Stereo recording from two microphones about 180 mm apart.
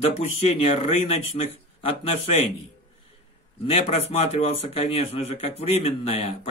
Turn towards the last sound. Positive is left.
turn(degrees=35)  # may be behind; listen again after turning